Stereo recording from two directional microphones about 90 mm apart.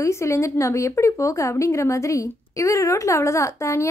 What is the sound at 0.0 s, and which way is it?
A woman's voice, 35° left (ahead or behind).